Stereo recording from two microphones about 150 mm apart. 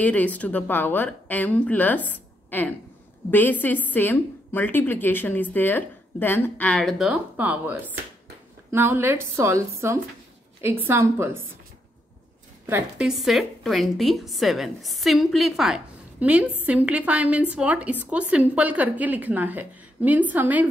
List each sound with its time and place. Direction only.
0.0 s a woman's voice: 10° left (ahead or behind); by 11.3 s 15° right (ahead or behind)
12.6 s a woman's voice: 10° right (ahead or behind)